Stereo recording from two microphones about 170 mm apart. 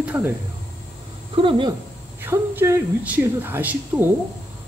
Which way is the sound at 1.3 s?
30° right (ahead or behind).